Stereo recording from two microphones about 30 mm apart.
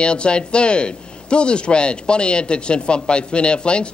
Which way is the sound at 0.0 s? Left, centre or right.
Left.